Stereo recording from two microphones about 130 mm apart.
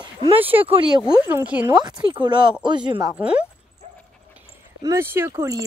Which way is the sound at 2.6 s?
35° right (ahead or behind).